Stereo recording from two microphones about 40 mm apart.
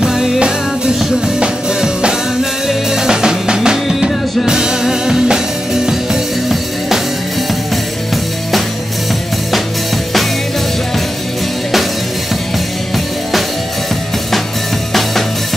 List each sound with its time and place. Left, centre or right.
0.0 s music: centre
0.4 s music: right
2.7 s music: centre